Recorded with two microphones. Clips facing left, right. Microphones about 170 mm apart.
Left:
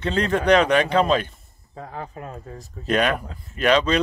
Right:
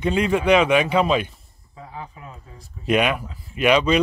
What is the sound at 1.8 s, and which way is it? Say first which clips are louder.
Speech: left 3 dB; 50° left (ahead or behind).